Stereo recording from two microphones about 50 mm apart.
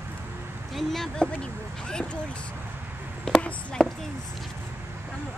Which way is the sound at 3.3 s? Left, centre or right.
Centre.